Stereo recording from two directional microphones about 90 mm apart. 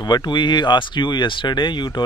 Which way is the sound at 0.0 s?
55° left (ahead or behind).